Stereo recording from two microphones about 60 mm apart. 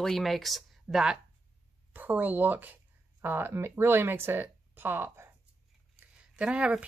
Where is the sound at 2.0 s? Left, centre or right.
Right.